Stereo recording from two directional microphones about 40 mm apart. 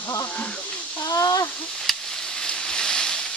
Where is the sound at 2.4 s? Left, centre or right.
Centre.